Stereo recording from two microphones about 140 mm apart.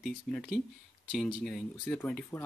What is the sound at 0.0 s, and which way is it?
Speech, centre (ahead or behind).